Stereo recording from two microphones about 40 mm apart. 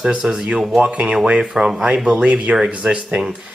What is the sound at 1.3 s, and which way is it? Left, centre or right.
Speech, centre.